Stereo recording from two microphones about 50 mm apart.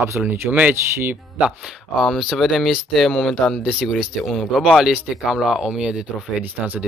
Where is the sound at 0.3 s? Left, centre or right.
Right.